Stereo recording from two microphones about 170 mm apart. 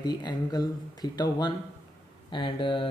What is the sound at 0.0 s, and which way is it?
Speech, 25° left (ahead or behind).